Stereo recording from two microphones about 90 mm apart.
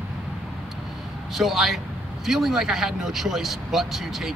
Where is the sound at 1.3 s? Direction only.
Centre (ahead or behind).